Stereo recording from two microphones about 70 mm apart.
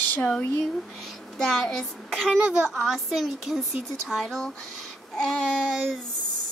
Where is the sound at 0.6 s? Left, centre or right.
Centre.